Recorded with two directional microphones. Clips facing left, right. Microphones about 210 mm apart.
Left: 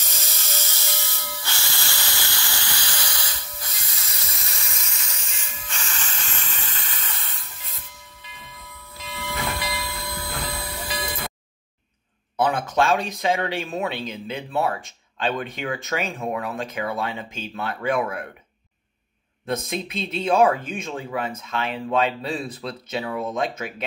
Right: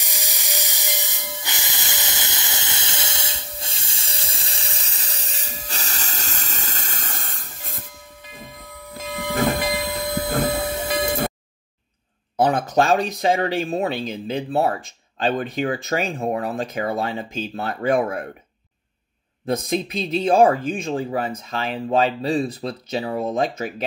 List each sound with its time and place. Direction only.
0.0 s spray: 15° right (ahead or behind); by 7.8 s 45° right (ahead or behind)
8.3 s train: 45° right (ahead or behind)
10.0 s train: 20° right (ahead or behind)
11.1 s a sound: 50° right (ahead or behind)
12.4 s speech: 40° right (ahead or behind)
20.2 s speech: 35° right (ahead or behind)